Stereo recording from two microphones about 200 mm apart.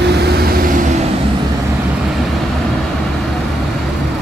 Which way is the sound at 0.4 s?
45° right (ahead or behind).